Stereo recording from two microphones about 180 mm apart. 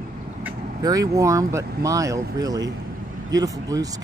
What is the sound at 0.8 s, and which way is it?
Speech, 20° right (ahead or behind).